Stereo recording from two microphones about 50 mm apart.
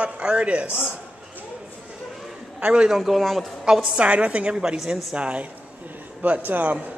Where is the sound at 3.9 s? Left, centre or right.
Right.